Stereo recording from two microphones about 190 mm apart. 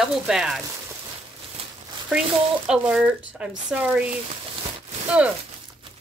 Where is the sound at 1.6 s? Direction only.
30° right (ahead or behind).